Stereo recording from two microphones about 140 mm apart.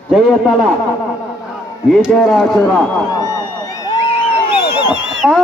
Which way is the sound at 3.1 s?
25° left (ahead or behind).